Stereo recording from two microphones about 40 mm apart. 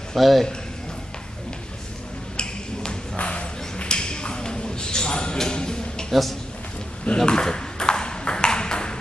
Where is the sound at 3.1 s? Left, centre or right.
Left.